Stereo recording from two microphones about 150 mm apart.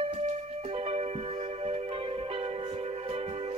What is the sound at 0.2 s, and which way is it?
Music, 45° right (ahead or behind).